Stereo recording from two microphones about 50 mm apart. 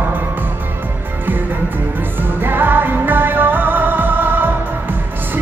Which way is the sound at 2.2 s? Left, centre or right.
Right.